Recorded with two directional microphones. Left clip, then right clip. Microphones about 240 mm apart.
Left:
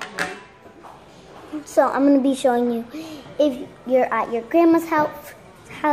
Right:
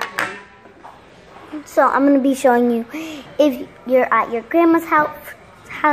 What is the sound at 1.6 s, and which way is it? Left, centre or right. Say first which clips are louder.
A woman's voice: right 3 dB; centre.